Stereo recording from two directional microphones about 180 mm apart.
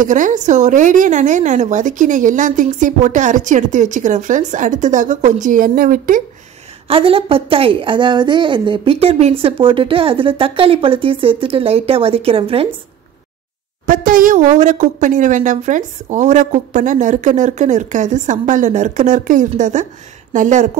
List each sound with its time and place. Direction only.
0.0 s a woman's voice: 45° right (ahead or behind)
6.9 s a woman's voice: 30° right (ahead or behind)
13.8 s a woman's voice: 50° right (ahead or behind)